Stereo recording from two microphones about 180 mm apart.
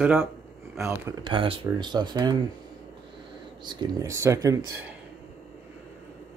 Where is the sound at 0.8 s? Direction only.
15° right (ahead or behind).